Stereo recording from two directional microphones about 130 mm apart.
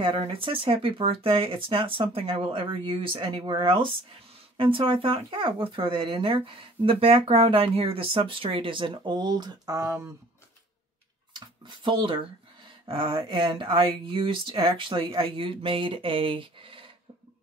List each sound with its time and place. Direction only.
0.0 s speech: 40° right (ahead or behind); by 10.0 s 25° right (ahead or behind)
11.3 s speech: 35° right (ahead or behind)